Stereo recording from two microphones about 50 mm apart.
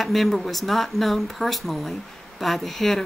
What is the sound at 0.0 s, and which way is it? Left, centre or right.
Speech, centre.